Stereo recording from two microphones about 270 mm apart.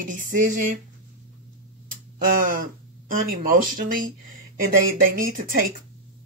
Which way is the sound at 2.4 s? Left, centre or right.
Right.